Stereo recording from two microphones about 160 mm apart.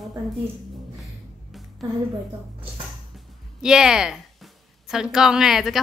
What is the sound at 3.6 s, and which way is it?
A woman's voice, 5° right (ahead or behind).